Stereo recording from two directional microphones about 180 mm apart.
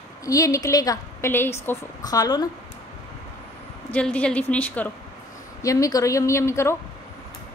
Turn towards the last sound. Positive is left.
turn(degrees=15)  # may be behind; listen again after turning